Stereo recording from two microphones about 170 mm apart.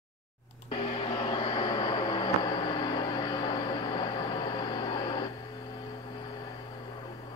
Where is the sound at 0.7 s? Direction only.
30° left (ahead or behind).